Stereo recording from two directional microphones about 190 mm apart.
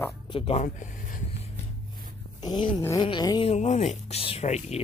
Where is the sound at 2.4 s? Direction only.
25° left (ahead or behind).